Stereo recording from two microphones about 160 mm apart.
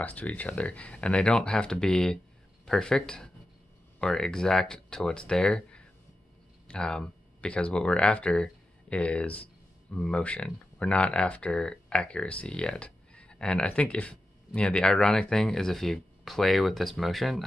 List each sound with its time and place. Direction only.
0.0 s speech: 10° left (ahead or behind)